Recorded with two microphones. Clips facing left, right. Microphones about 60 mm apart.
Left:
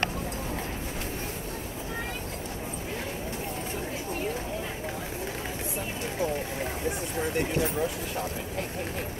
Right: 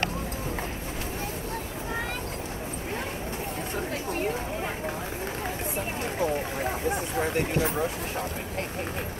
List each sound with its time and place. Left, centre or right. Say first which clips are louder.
7.2 s speech: even; right